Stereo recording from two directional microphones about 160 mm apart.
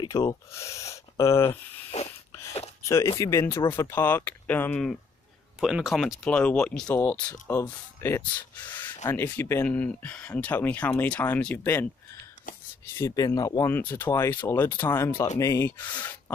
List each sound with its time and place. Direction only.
0.0 s speech: 20° left (ahead or behind)
1.9 s a sound: 45° left (ahead or behind)
2.8 s speech: 15° left (ahead or behind)
5.6 s speech: 5° right (ahead or behind)
8.0 s speech: 10° left (ahead or behind)
12.5 s whispering: 55° left (ahead or behind)
12.9 s speech: 20° left (ahead or behind)